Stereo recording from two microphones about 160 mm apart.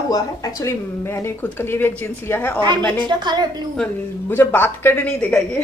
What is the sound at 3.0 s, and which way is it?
Speech, 30° right (ahead or behind).